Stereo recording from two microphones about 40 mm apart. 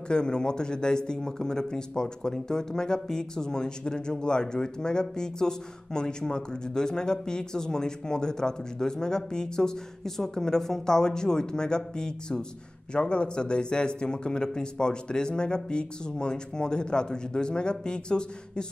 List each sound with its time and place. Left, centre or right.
0.1 s speech: left